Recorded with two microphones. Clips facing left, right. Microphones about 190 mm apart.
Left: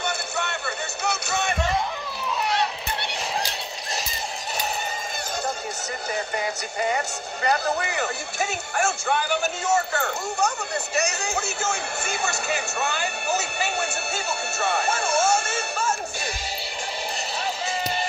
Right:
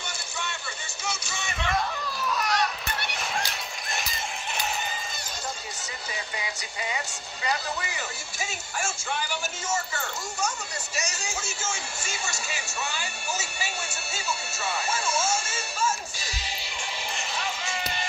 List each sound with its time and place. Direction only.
0.0 s music: 65° left (ahead or behind)
2.3 s a sound: 25° left (ahead or behind)
6.1 s speech: 55° left (ahead or behind)
17.6 s music: 35° left (ahead or behind)